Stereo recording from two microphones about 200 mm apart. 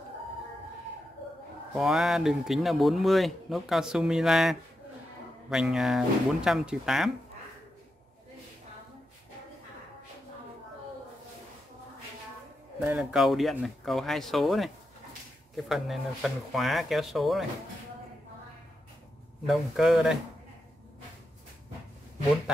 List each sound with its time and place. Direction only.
1.7 s speech: centre (ahead or behind)
12.8 s speech: 5° right (ahead or behind)
19.4 s speech: centre (ahead or behind)